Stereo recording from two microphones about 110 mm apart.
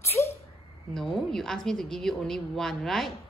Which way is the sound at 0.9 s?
5° left (ahead or behind).